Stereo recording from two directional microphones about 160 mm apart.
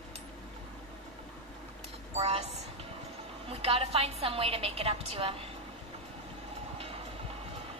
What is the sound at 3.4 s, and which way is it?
A woman's voice, 35° right (ahead or behind).